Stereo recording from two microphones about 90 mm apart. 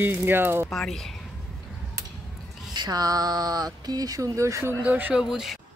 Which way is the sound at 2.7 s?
50° right (ahead or behind).